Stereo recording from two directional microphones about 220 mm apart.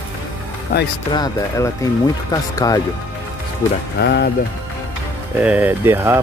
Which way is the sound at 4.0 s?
50° left (ahead or behind).